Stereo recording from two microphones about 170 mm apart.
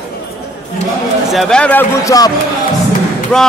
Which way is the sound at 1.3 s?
Centre (ahead or behind).